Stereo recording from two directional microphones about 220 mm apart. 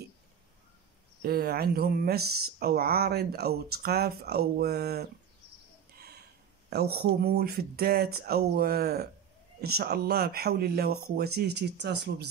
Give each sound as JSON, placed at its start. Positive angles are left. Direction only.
{"t": 1.2, "sound": "speech", "side_deg": -45}
{"t": 5.9, "sound": "a sound", "side_deg": -45}
{"t": 6.7, "sound": "speech", "side_deg": -45}